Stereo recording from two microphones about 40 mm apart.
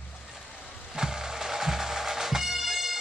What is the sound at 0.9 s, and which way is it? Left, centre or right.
Music, centre.